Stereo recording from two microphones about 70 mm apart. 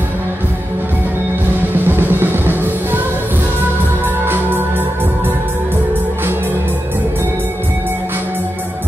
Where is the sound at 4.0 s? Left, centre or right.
Right.